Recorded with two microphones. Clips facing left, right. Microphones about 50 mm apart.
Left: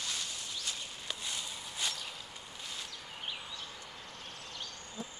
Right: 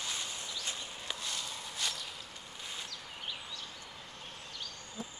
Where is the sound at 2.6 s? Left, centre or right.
Centre.